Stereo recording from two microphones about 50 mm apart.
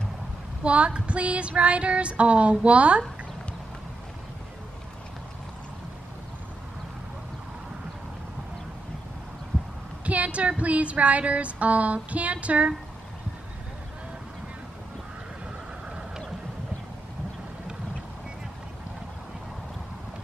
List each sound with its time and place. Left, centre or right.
0.7 s female singing: right
10.0 s a sound: right
10.6 s female singing: right